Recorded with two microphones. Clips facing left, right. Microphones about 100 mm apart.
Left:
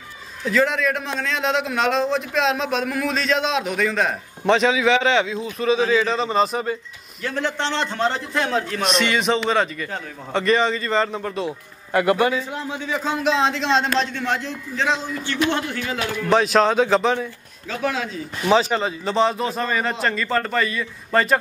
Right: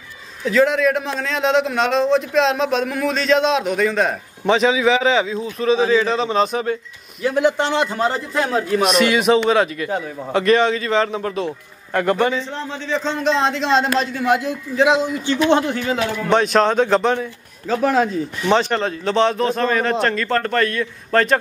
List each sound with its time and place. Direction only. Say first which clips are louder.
0.5 s a man's voice: right 4 dB; centre (ahead or behind)
7.2 s a man's voice: right 7 dB; 10° right (ahead or behind)
16.3 s a man's voice: right 1 dB; centre (ahead or behind)
17.6 s speech: right 8 dB; 45° right (ahead or behind)
18.5 s a man's voice: even; 5° left (ahead or behind)